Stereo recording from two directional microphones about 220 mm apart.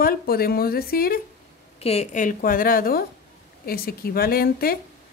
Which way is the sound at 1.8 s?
30° left (ahead or behind).